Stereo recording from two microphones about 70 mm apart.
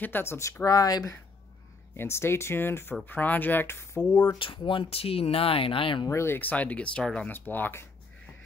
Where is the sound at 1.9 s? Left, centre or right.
Left.